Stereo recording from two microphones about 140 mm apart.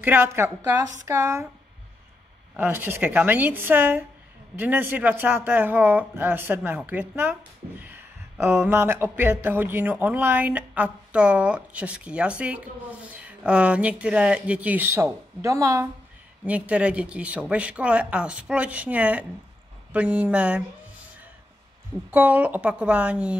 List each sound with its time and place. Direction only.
0.0 s speech: 15° right (ahead or behind)
2.5 s speech: 15° right (ahead or behind)
16.4 s speech: 10° right (ahead or behind)
22.1 s speech: 10° right (ahead or behind)